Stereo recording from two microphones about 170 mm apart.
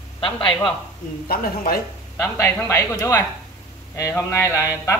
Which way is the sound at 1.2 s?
60° left (ahead or behind).